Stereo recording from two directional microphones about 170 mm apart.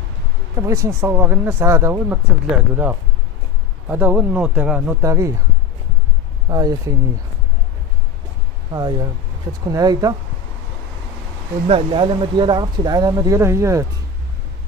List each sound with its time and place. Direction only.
0.6 s speech: 15° right (ahead or behind)
6.5 s speech: 20° right (ahead or behind)
8.7 s speech: 25° right (ahead or behind)
11.6 s speech: 35° right (ahead or behind); by 13.8 s 15° right (ahead or behind)